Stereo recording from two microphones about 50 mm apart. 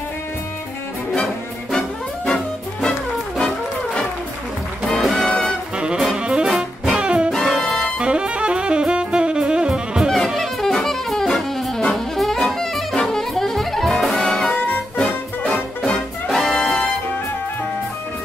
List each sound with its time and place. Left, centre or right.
1.7 s music: centre
4.8 s music: centre
6.1 s saxophone: centre
6.4 s saxophone: centre
7.0 s music: right
7.3 s music: centre
8.0 s saxophone: centre
10.0 s saxophone: centre
15.4 s music: centre